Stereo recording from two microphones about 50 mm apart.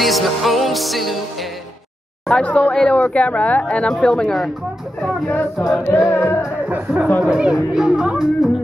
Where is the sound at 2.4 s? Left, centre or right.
Left.